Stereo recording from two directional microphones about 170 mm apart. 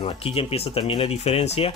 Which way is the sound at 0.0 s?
35° left (ahead or behind).